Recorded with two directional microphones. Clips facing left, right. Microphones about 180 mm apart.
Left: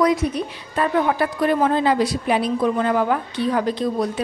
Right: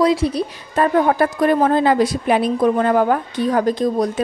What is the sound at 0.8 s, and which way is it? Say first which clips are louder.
A woman's voice: right 4 dB; 45° right (ahead or behind).